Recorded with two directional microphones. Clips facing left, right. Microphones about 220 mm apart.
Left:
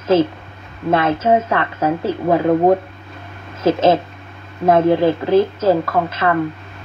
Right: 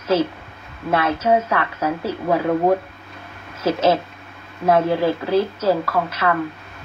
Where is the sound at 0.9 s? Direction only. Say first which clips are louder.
Left 3 dB; 25° left (ahead or behind).